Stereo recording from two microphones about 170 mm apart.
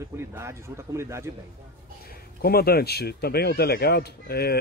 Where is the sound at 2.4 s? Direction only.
65° left (ahead or behind).